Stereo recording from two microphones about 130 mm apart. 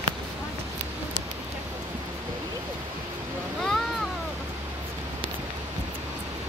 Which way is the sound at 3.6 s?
Centre (ahead or behind).